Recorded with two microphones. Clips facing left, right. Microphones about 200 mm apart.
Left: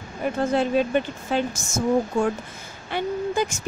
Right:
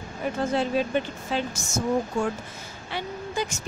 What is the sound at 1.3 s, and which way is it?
Speech, 50° left (ahead or behind).